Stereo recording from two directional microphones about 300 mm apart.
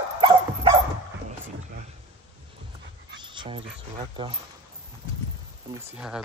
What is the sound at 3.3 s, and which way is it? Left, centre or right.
Speech, centre.